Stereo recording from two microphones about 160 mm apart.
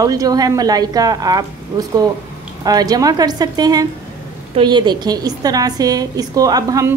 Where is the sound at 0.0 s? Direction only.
20° right (ahead or behind).